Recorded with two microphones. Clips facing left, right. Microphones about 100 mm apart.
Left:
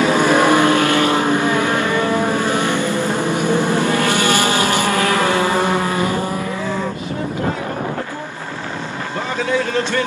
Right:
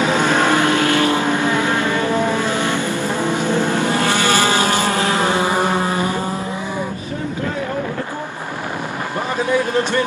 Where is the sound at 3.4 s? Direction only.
15° left (ahead or behind).